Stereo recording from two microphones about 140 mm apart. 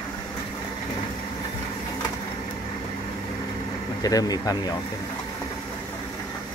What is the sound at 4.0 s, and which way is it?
Speech, 25° left (ahead or behind).